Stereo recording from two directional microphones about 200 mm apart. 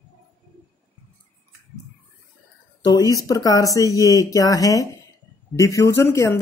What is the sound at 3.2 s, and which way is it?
Speech, 20° left (ahead or behind).